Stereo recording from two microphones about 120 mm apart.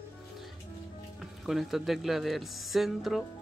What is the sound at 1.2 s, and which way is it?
Speech, centre (ahead or behind).